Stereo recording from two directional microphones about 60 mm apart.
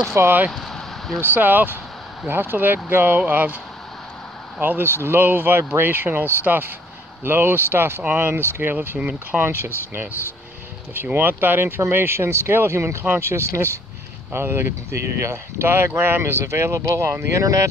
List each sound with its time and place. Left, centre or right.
0.1 s speech: right
0.5 s a sound: centre
1.2 s speech: right
4.6 s speech: right
9.0 s speech: centre
9.4 s speech: right
17.4 s speech: right